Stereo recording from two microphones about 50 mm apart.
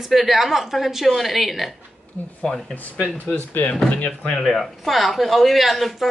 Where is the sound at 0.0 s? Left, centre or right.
Centre.